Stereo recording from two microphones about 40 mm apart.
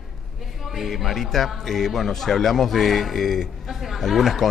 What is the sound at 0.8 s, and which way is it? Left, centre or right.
A woman's voice, centre.